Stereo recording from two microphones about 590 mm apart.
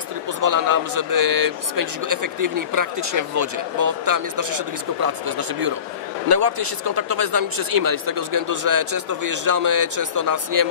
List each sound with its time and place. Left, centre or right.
0.4 s speech: right